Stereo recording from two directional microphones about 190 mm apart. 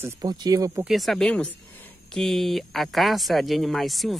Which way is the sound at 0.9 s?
Centre (ahead or behind).